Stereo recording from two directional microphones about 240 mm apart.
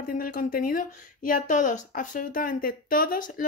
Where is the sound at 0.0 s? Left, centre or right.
Left.